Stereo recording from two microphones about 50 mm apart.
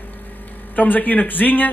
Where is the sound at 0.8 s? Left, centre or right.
Left.